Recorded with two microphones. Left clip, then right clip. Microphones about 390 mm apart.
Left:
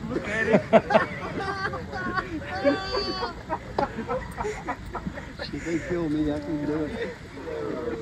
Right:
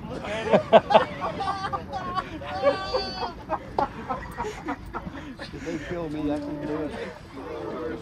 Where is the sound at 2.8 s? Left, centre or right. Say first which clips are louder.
Even; centre.